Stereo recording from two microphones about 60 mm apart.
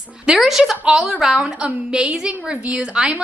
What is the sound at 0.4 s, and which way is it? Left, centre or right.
A woman's voice, centre.